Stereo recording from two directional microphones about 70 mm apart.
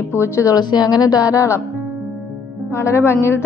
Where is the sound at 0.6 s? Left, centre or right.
Left.